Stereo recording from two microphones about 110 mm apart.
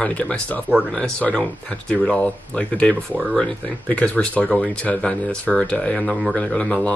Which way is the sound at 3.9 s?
10° left (ahead or behind).